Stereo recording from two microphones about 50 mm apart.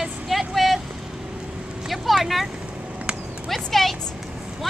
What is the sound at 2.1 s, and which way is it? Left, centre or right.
Vehicle, centre.